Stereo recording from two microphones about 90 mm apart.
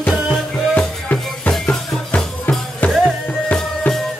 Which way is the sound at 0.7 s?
15° left (ahead or behind).